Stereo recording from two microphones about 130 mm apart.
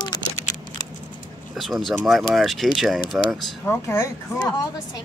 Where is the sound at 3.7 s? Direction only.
20° left (ahead or behind).